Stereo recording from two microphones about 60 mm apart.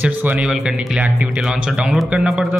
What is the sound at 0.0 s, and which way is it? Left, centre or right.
Speech, right.